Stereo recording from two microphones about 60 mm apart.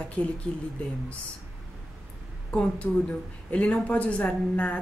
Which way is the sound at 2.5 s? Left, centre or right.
Left.